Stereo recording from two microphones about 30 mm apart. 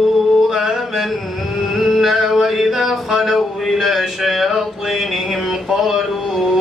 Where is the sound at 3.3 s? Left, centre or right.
Centre.